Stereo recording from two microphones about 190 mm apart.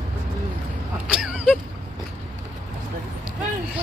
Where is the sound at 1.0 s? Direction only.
5° right (ahead or behind).